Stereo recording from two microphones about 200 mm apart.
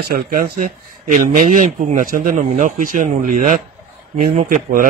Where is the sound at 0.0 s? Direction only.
50° right (ahead or behind).